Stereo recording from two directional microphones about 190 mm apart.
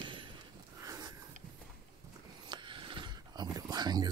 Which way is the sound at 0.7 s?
15° right (ahead or behind).